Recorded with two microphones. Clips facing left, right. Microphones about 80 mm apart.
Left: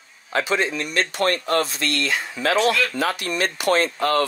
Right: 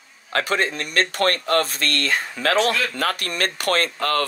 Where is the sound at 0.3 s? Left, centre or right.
Right.